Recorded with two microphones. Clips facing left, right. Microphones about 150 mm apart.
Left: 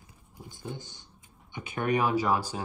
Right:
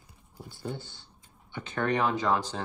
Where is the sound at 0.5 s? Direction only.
15° left (ahead or behind).